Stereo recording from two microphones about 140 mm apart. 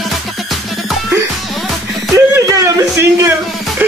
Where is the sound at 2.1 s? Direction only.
20° right (ahead or behind).